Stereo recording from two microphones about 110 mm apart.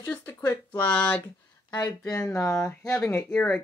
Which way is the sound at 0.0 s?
15° left (ahead or behind).